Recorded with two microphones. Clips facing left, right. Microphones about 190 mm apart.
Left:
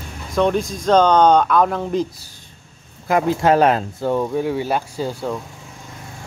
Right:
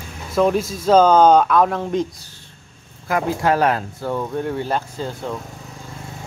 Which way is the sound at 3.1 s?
25° left (ahead or behind).